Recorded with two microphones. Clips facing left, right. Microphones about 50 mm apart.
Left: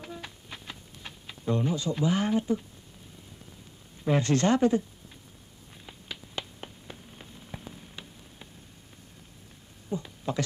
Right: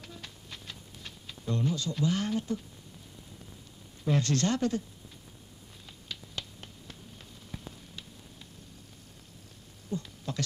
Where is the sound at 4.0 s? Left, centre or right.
Centre.